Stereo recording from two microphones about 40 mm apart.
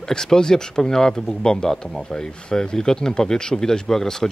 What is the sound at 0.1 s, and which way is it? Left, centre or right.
Speech, centre.